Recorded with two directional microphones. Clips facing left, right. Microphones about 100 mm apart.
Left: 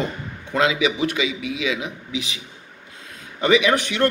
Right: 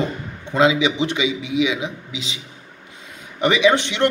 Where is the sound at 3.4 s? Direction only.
20° right (ahead or behind).